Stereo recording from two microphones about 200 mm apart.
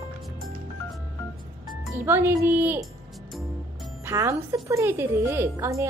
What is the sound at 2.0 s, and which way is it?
Speech, 10° right (ahead or behind).